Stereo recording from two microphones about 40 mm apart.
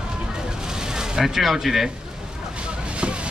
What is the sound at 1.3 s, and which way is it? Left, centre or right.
Speech, centre.